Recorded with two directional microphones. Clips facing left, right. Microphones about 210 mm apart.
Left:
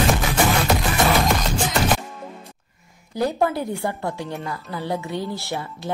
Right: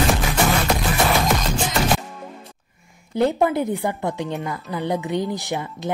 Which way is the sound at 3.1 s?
20° right (ahead or behind).